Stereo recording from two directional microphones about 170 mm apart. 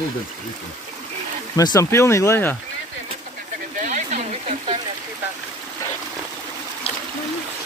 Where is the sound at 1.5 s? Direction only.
20° left (ahead or behind).